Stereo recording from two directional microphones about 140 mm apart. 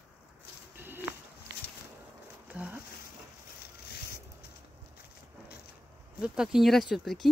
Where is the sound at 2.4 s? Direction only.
10° right (ahead or behind).